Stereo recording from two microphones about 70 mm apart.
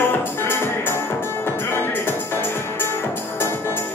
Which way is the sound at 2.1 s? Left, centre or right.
Left.